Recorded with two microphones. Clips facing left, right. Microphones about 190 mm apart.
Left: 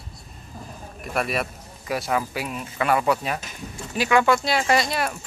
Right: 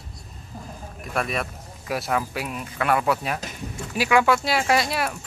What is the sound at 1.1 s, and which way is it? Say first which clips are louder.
Speech: left 1 dB; 5° left (ahead or behind).